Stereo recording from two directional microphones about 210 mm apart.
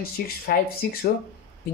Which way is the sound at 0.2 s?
45° left (ahead or behind).